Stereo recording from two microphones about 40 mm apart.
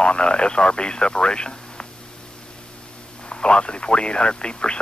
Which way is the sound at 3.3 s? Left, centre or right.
Left.